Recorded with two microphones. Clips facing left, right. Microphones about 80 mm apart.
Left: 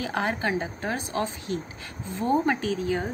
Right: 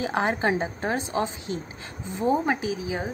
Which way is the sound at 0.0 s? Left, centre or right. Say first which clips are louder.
Right 3 dB; right.